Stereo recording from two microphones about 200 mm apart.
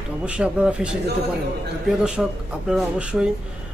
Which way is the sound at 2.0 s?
5° right (ahead or behind).